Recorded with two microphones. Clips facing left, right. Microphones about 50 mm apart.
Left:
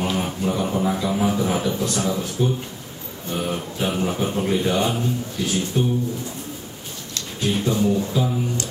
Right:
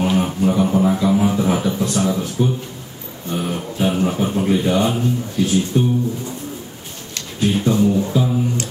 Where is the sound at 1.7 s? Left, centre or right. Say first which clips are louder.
Right 4 dB; right.